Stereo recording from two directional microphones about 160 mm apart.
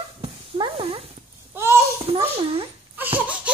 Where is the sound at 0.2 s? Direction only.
35° right (ahead or behind).